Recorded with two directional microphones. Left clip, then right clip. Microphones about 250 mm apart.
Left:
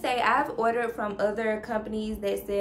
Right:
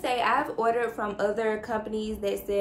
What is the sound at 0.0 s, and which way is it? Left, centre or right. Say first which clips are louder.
Speech: left 1 dB; centre.